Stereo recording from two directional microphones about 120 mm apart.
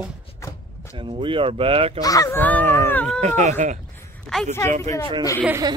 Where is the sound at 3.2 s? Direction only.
85° right.